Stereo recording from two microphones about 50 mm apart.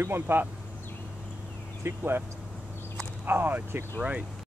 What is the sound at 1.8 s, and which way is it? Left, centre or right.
Speech, right.